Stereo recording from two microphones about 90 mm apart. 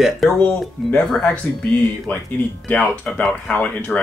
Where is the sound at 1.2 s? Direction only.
15° left (ahead or behind).